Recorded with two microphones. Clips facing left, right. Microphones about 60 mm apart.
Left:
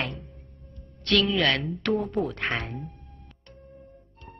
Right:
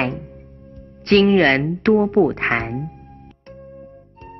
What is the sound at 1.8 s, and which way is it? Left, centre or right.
Speech, right.